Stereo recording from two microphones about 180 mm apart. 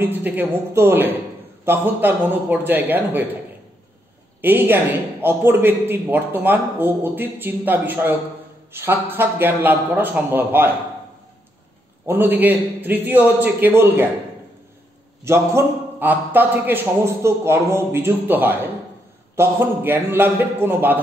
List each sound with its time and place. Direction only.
0.0 s a man's voice: 10° right (ahead or behind)
4.4 s a man's voice: 10° right (ahead or behind)
12.1 s a man's voice: 10° right (ahead or behind)
15.2 s a man's voice: 15° right (ahead or behind)